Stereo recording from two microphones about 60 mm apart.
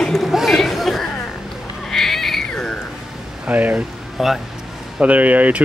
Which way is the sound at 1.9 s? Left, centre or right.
Centre.